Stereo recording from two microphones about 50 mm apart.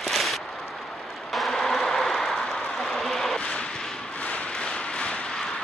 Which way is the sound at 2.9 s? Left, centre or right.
Centre.